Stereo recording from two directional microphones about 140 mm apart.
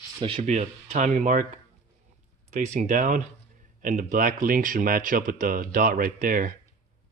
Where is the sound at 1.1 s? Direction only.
70° right (ahead or behind).